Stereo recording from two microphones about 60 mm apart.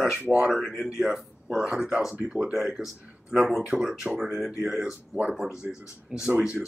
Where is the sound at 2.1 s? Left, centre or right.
Centre.